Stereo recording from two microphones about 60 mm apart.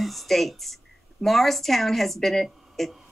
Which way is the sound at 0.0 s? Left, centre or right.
Centre.